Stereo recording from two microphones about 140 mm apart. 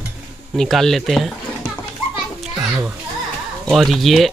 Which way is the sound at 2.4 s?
5° right (ahead or behind).